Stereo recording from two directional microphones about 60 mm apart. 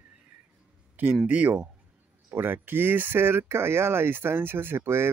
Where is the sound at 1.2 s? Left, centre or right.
Right.